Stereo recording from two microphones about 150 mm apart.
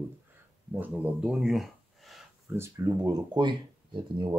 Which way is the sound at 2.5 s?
20° right (ahead or behind).